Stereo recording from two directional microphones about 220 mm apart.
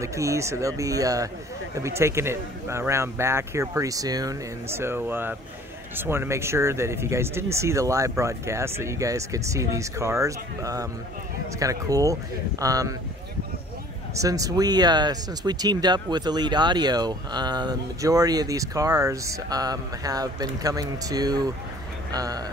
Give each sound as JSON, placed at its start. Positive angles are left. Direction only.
{"t": 0.0, "sound": "speech", "side_deg": -15}
{"t": 14.1, "sound": "speech", "side_deg": -15}